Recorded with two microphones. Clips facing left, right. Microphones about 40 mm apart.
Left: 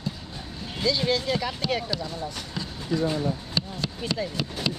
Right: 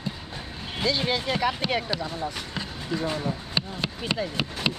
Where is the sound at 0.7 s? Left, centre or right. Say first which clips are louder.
Left 1 dB; right.